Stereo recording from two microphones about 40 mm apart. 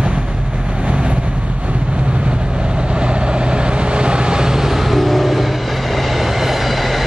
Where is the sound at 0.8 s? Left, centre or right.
Right.